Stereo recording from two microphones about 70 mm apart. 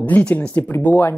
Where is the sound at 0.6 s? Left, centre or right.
Left.